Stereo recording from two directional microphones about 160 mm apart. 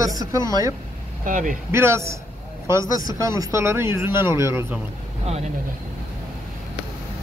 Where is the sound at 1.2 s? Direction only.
55° right (ahead or behind).